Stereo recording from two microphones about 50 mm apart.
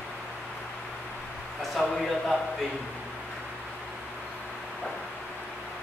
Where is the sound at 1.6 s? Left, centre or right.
Centre.